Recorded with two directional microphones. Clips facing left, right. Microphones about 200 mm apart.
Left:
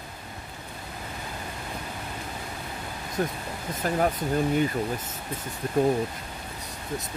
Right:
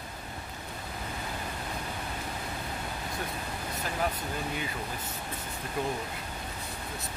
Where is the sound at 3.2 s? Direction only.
45° left (ahead or behind).